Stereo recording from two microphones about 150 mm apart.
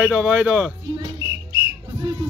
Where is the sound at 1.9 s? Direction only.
25° right (ahead or behind).